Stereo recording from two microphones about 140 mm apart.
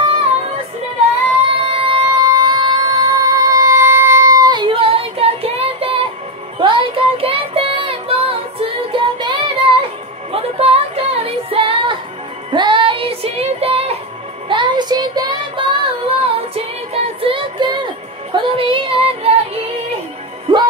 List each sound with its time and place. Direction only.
1.7 s music: 40° right (ahead or behind)
6.6 s child singing: 35° right (ahead or behind)
10.3 s music: 45° right (ahead or behind)
14.5 s child singing: 35° right (ahead or behind)
18.3 s female singing: 35° right (ahead or behind)
20.5 s music: 35° right (ahead or behind)